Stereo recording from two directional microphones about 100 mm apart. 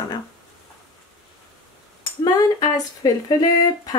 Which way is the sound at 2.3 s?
40° left (ahead or behind).